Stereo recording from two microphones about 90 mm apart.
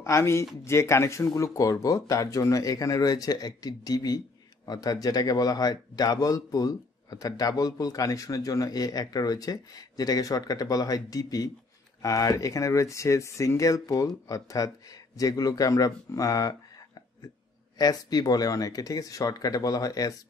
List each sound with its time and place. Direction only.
0.0 s a man's voice: 30° left (ahead or behind)
17.7 s a man's voice: 45° left (ahead or behind)